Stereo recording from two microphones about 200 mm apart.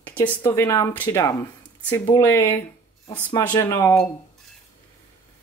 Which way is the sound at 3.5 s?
15° left (ahead or behind).